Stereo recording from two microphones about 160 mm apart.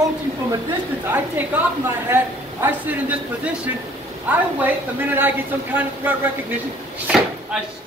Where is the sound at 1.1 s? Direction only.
10° right (ahead or behind).